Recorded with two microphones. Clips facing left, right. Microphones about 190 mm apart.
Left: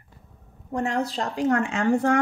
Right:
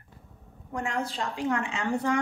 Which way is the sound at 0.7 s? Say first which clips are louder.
Left 5 dB; 35° left (ahead or behind).